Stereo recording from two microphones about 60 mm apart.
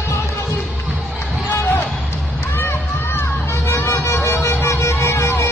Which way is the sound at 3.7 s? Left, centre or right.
Left.